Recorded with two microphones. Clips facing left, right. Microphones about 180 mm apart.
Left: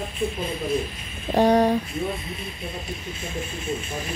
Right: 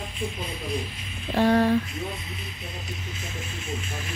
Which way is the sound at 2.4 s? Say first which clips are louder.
Left 5 dB; 55° left (ahead or behind).